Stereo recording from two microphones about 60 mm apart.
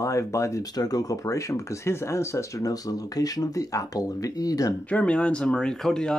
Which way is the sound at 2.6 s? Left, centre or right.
Left.